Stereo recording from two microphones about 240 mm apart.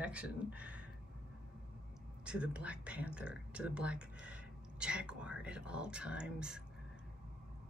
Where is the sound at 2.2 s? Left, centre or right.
Centre.